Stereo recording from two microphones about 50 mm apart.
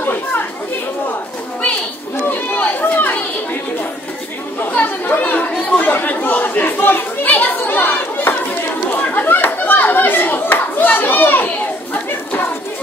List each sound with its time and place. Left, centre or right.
0.0 s chatter: left
2.2 s chatter: left
4.6 s chatter: left
9.0 s a sound: left